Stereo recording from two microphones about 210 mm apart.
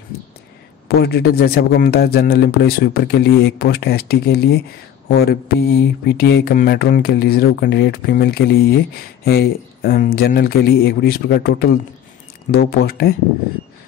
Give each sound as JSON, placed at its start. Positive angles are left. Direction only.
{"t": 0.8, "sound": "a man's voice", "side_deg": 50}